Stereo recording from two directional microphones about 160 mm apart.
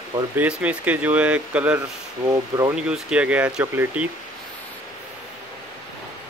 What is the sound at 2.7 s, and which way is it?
Speech, 5° right (ahead or behind).